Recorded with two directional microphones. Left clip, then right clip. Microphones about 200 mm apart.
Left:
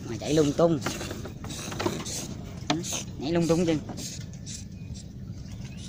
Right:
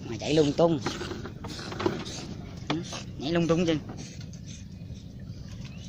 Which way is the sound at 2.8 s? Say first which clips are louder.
Left 4 dB; 20° left (ahead or behind).